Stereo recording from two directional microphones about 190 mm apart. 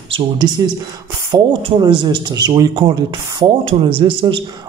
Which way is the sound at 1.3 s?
25° right (ahead or behind).